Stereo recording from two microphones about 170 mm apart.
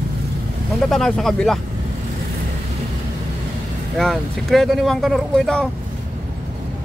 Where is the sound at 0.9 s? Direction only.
5° left (ahead or behind).